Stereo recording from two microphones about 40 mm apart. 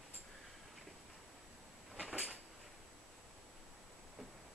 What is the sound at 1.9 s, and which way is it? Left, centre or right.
Cupboard open or close, right.